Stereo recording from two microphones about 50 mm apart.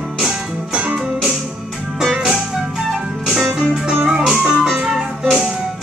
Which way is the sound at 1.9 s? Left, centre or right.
Centre.